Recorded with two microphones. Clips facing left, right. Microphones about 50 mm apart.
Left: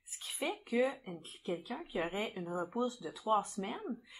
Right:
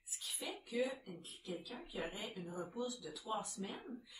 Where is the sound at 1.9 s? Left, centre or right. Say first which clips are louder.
Left 8 dB; left.